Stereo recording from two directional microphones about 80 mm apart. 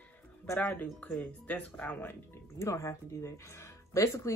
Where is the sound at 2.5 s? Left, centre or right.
Left.